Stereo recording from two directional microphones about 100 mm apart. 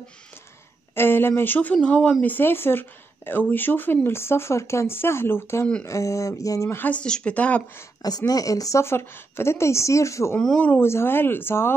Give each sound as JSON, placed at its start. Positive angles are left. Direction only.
{"t": 0.9, "sound": "a woman's voice", "side_deg": 20}
{"t": 5.9, "sound": "a sound", "side_deg": 30}
{"t": 6.8, "sound": "speech", "side_deg": 10}
{"t": 8.3, "sound": "a woman's voice", "side_deg": 35}